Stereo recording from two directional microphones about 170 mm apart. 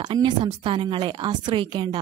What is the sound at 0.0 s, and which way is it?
Speech, 25° right (ahead or behind).